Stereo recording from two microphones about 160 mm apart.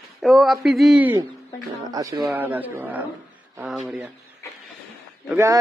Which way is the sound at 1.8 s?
20° right (ahead or behind).